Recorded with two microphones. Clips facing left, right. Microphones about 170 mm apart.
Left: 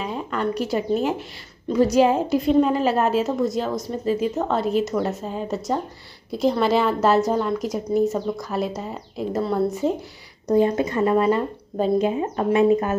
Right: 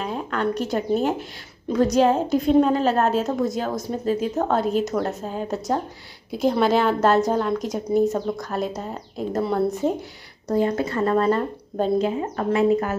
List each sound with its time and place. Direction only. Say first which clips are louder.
0.0 s a sound: even; centre (ahead or behind)
1.7 s a woman's voice: left 1 dB; 5° left (ahead or behind)
10.5 s a woman's voice: left 3 dB; 20° left (ahead or behind)
12.0 s speech: left 2 dB; 20° left (ahead or behind)